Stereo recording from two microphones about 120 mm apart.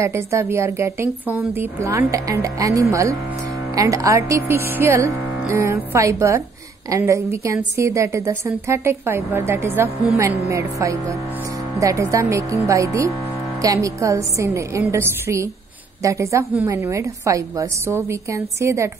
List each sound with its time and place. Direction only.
0.0 s a woman's voice: 20° right (ahead or behind)